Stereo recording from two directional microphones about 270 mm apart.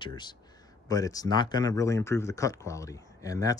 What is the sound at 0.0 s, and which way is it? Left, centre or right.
Speech, centre.